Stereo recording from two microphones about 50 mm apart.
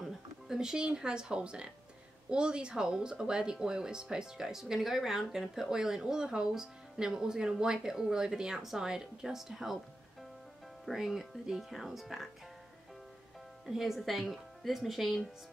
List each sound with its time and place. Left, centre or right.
0.0 s speech: centre
10.9 s speech: centre
13.7 s speech: centre